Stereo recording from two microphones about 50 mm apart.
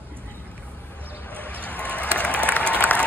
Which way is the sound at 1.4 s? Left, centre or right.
Left.